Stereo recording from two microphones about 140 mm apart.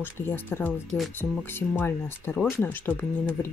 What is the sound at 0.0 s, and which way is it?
Speech, 15° left (ahead or behind).